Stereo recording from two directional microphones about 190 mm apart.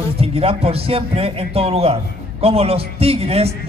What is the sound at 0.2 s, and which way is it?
A man's voice, 30° right (ahead or behind).